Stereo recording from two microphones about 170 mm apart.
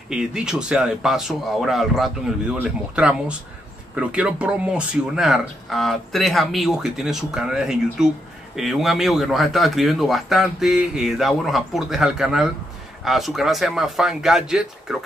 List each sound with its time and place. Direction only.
0.1 s speech: 5° right (ahead or behind)